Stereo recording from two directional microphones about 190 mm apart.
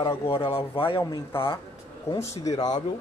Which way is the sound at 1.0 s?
15° left (ahead or behind).